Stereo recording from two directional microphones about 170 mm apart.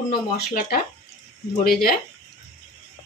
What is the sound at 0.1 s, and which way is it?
Speech, 65° left (ahead or behind).